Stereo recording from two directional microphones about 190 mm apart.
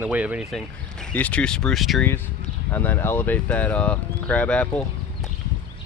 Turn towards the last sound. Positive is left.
turn(degrees=5)  # may be behind; listen again after turning